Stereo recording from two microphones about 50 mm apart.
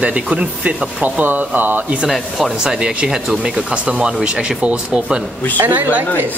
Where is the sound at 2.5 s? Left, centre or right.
Centre.